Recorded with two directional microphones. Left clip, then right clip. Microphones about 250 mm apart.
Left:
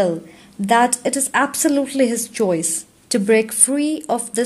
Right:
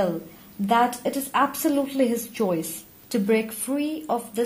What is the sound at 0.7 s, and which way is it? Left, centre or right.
A woman's voice, left.